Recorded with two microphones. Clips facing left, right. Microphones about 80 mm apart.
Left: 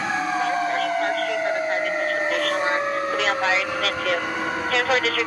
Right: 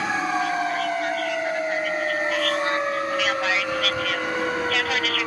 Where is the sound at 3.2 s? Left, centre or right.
Left.